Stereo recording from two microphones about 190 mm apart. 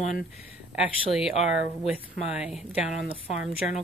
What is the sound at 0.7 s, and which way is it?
Speech, 5° right (ahead or behind).